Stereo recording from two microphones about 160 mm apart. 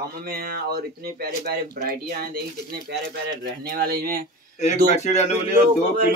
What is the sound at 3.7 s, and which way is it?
Speech, 65° right (ahead or behind).